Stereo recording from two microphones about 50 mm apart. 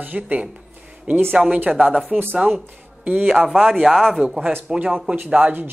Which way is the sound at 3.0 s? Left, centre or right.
Right.